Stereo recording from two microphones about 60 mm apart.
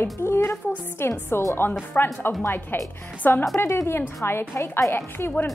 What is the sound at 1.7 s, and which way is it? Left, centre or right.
A woman's voice, left.